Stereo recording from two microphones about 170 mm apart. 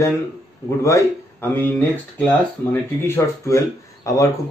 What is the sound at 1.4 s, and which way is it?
Speech, 10° left (ahead or behind).